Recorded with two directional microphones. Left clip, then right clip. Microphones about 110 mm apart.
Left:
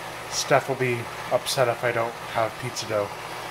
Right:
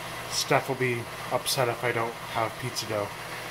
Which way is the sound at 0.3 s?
25° left (ahead or behind).